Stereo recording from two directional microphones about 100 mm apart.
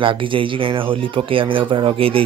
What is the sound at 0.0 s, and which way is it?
Speech, 60° right (ahead or behind).